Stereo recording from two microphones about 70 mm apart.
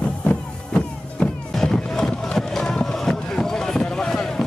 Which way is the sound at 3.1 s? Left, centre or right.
Centre.